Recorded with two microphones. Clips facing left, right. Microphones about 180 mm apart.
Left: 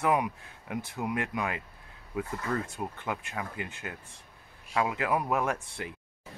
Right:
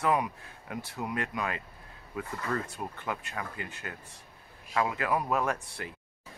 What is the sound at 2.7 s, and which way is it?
Speech, 15° left (ahead or behind).